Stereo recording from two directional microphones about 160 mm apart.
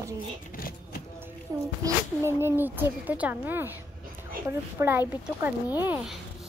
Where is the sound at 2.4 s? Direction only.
15° right (ahead or behind).